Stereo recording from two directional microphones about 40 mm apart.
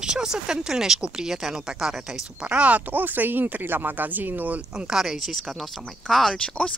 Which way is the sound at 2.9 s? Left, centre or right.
Right.